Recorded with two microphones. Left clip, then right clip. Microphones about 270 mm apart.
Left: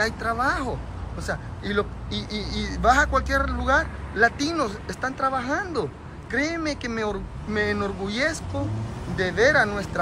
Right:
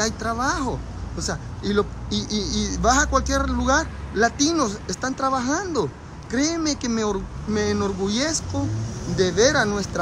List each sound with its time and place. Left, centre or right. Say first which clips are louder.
0.0 s speech: even; centre